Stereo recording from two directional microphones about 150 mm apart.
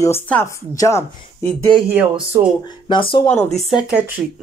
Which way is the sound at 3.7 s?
5° right (ahead or behind).